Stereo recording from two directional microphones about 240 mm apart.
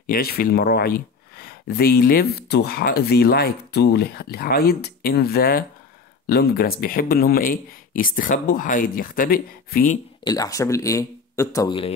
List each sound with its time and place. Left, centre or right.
0.0 s speech: left
10.2 s speech: centre